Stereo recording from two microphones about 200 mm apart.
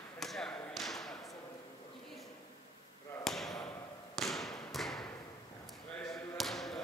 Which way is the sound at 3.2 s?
Centre (ahead or behind).